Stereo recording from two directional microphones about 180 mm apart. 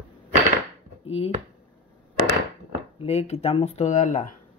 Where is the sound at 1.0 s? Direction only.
35° left (ahead or behind).